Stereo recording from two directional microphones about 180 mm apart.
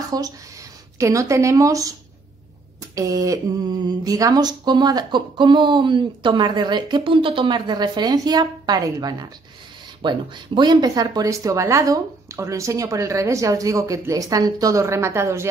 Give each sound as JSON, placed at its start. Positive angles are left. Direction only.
{"t": 0.1, "sound": "speech", "side_deg": -20}